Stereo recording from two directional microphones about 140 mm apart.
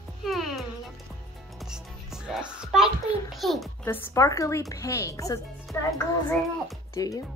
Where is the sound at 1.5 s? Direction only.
5° right (ahead or behind).